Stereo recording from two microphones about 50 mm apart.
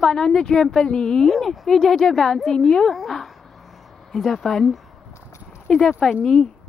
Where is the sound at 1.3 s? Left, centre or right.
Centre.